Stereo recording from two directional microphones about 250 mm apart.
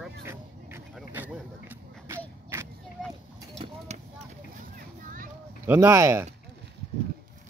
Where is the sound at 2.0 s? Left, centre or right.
Centre.